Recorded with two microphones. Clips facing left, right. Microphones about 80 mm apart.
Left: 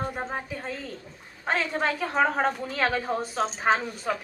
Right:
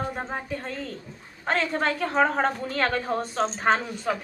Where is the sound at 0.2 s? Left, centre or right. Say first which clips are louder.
Right 1 dB; centre.